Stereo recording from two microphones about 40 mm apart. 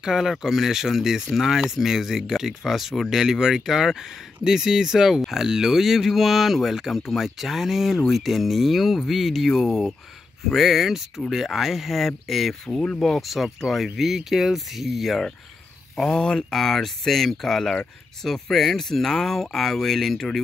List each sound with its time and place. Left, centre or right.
0.0 s speech: centre
12.6 s speech: left
13.0 s speech: centre
16.0 s speech: centre